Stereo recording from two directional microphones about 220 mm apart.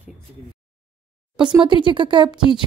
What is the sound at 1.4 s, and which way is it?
Speech, 5° right (ahead or behind).